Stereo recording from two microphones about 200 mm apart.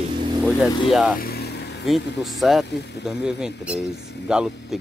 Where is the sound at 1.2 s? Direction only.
50° left (ahead or behind).